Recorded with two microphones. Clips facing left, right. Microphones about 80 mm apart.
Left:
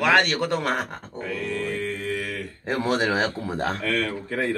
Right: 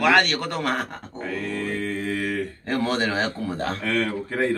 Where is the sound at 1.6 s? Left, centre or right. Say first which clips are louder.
Right 1 dB; right.